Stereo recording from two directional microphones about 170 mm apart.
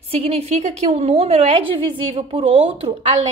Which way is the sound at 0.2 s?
40° right (ahead or behind).